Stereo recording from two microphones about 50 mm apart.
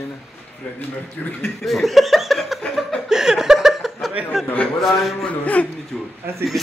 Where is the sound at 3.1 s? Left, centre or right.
Centre.